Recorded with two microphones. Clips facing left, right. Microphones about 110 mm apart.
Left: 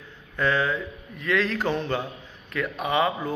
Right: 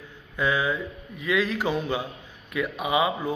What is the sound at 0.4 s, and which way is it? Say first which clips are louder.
A man's voice: left 1 dB; 10° right (ahead or behind).